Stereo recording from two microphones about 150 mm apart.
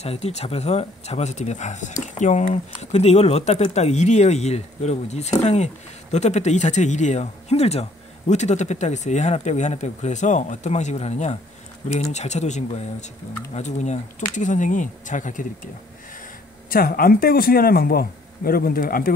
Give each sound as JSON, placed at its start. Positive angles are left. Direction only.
{"t": 0.0, "sound": "speech", "side_deg": 45}
{"t": 16.7, "sound": "speech", "side_deg": 75}